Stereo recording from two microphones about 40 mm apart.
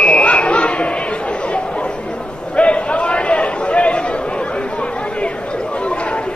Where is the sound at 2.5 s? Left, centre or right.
Left.